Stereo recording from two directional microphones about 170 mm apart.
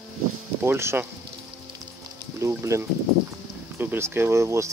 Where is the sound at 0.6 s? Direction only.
15° right (ahead or behind).